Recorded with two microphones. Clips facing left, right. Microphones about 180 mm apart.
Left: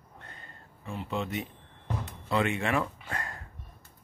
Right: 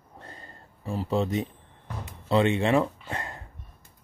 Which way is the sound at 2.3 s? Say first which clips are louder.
Right 6 dB; 30° right (ahead or behind).